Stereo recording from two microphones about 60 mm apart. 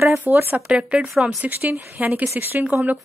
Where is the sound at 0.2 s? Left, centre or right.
Right.